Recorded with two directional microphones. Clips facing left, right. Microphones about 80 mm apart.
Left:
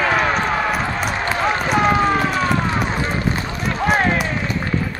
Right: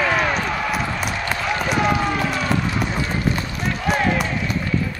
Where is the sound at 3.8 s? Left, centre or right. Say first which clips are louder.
Left 3 dB; left.